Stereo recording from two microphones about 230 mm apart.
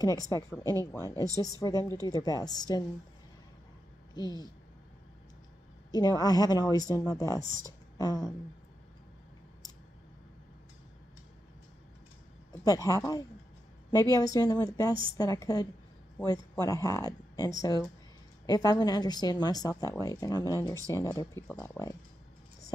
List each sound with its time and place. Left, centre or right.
0.0 s a woman's voice: centre
4.1 s speech: centre
5.9 s a woman's voice: centre
12.6 s a woman's voice: centre